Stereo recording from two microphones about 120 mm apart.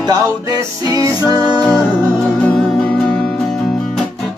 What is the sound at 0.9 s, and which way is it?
Music, 35° right (ahead or behind).